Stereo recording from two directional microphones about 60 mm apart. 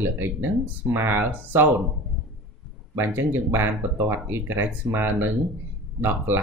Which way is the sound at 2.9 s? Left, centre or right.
Right.